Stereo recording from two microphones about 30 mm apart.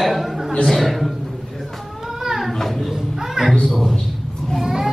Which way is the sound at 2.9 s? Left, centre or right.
Centre.